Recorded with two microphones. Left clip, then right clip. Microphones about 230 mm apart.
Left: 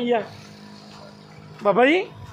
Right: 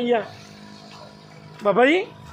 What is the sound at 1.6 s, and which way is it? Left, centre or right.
Speech, centre.